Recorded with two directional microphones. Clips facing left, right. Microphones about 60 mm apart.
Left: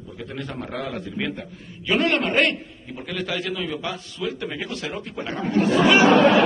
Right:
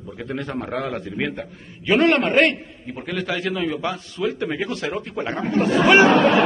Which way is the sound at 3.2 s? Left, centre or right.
Right.